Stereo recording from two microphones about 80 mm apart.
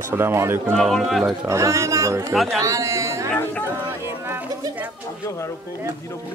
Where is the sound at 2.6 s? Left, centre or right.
Right.